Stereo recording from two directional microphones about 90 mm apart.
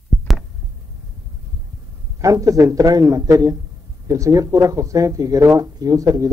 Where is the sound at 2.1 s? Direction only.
40° right (ahead or behind).